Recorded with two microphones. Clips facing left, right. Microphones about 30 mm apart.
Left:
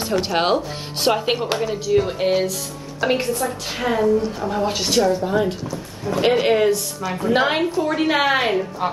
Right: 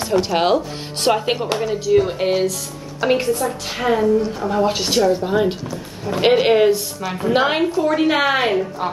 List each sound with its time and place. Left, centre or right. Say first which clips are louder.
0.2 s speech: right 1 dB; centre
5.1 s a woman's voice: right 2 dB; centre